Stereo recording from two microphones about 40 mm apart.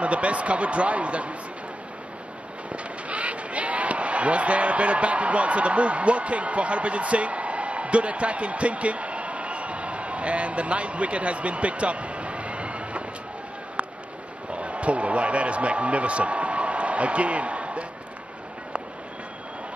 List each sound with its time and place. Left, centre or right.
0.0 s speech: right
2.7 s speech: right
13.8 s a sound: right
14.5 s speech: right